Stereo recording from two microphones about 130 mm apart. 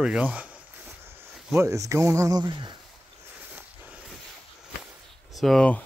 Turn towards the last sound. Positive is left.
turn(degrees=5)  # may be behind; listen again after turning